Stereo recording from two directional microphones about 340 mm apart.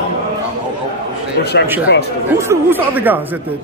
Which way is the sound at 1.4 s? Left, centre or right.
Left.